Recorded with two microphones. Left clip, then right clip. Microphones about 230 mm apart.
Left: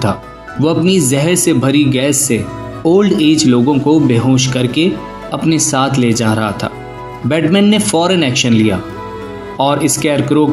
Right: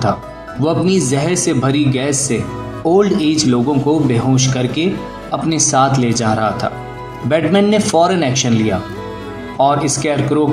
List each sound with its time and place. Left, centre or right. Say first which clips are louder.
0.6 s speech: left 3 dB; left